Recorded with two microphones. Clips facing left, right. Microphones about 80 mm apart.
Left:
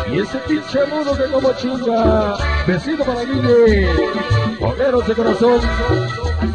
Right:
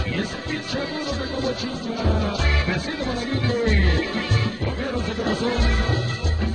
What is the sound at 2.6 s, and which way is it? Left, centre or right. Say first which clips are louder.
Speech: left 8 dB; left.